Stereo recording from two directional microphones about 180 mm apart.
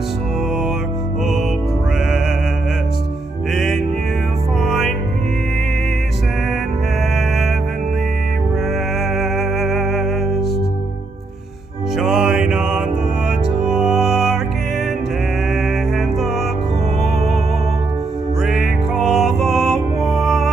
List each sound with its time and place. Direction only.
3.5 s music: centre (ahead or behind)
9.2 s music: centre (ahead or behind)
12.0 s mantra: 5° right (ahead or behind)
13.7 s music: 5° right (ahead or behind)
18.4 s music: 5° right (ahead or behind)